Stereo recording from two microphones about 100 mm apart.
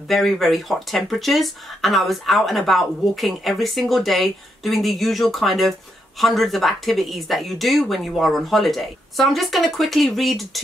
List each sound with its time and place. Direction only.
0.1 s speech: centre (ahead or behind)